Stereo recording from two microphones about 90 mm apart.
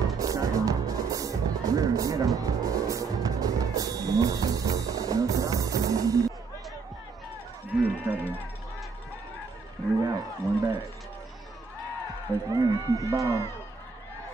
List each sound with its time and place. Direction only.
0.2 s music: 40° right (ahead or behind)
7.8 s run: 15° right (ahead or behind)
10.0 s wild animals: 40° right (ahead or behind)
12.5 s speech: 40° right (ahead or behind)